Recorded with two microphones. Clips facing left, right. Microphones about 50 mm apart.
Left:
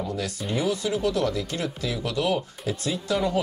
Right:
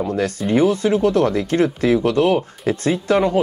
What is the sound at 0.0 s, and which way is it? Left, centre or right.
Speech, right.